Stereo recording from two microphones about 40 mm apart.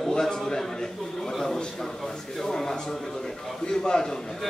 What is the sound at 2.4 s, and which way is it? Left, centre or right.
A man's voice, centre.